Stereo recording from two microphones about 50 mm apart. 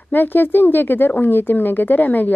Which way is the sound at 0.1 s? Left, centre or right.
Left.